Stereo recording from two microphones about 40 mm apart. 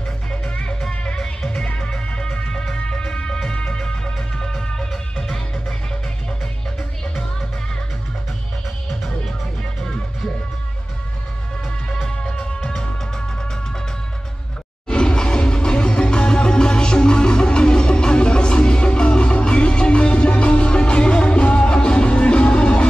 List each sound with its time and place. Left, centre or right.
0.3 s music: left
8.8 s music: centre
12.2 s music: left
14.9 s music: left